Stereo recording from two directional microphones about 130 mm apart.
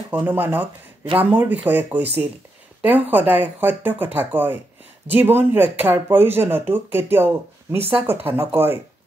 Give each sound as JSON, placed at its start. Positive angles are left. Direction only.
{"t": 0.1, "sound": "speech", "side_deg": -15}